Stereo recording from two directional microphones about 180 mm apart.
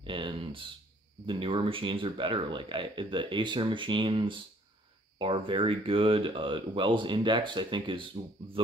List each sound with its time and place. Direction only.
0.0 s speech: 30° right (ahead or behind)